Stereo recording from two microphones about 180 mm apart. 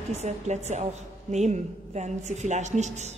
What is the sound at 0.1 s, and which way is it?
A woman's voice, 40° right (ahead or behind).